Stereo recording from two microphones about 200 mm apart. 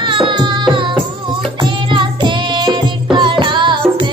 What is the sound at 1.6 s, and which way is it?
Music, 25° right (ahead or behind).